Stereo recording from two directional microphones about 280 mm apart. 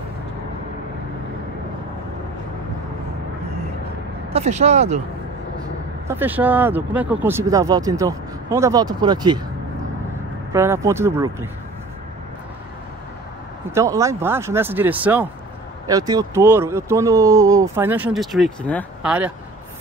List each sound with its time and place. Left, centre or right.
4.3 s speech: right
6.0 s speech: centre
10.5 s speech: centre
13.7 s speech: centre